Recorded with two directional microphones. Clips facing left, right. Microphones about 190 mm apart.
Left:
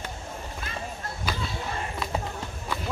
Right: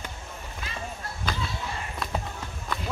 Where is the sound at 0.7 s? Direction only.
50° left (ahead or behind).